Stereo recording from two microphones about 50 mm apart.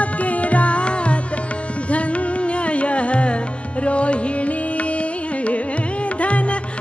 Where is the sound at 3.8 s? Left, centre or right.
Left.